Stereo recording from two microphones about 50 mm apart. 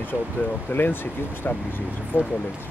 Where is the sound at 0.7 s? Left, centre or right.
Left.